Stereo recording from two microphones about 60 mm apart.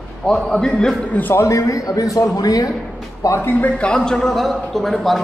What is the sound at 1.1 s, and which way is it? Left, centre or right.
Speech, left.